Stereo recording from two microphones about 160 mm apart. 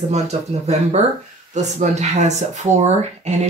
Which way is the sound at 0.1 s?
45° right (ahead or behind).